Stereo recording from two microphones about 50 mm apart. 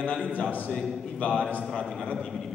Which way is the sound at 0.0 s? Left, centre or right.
Right.